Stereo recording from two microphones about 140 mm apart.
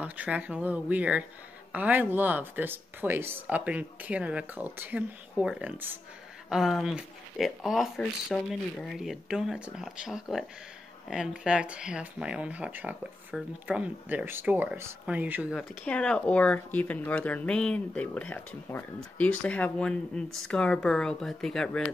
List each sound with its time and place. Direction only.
0.0 s speech: 10° right (ahead or behind)
15.5 s speech: 5° left (ahead or behind)